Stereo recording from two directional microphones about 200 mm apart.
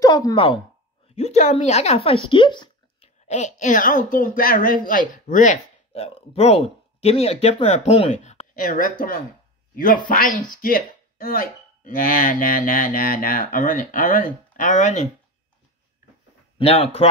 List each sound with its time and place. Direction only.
0.0 s speech: 20° left (ahead or behind)
1.1 s speech: 35° left (ahead or behind)
2.2 s a sound: 25° left (ahead or behind)
3.3 s speech: 35° left (ahead or behind)
10.5 s speech: 45° left (ahead or behind)
16.5 s speech: 30° left (ahead or behind)